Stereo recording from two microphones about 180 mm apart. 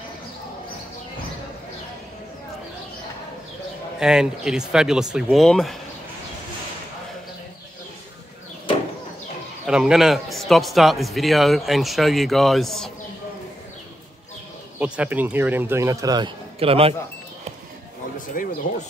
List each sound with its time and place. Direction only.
4.0 s a man's voice: 5° right (ahead or behind)
9.7 s a man's voice: 5° right (ahead or behind)
14.8 s speech: 10° right (ahead or behind)
16.5 s speech: 30° right (ahead or behind)
18.4 s speech: 50° left (ahead or behind)